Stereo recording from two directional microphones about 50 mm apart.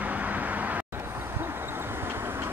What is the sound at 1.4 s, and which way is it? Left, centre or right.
Vehicle, right.